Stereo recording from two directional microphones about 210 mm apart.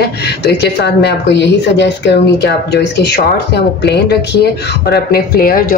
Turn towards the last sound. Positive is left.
turn(degrees=45)  # may be behind; listen again after turning